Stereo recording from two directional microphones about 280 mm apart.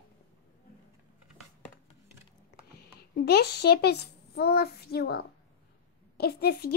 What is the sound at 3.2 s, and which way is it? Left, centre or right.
Speech, left.